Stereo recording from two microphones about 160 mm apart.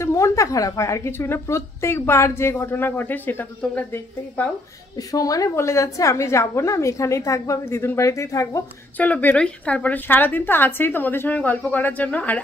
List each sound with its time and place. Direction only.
0.0 s a woman's voice: 20° left (ahead or behind)
4.9 s a woman's voice: 20° left (ahead or behind)